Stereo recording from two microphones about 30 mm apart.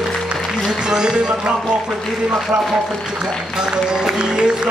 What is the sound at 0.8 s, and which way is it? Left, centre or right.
Speech, right.